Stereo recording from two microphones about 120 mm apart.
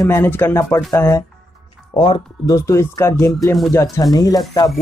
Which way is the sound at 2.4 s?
25° left (ahead or behind).